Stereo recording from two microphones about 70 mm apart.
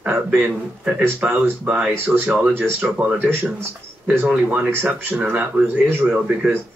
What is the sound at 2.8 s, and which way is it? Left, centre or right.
Speech, centre.